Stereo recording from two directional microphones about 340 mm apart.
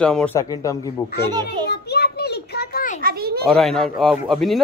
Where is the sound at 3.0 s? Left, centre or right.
Right.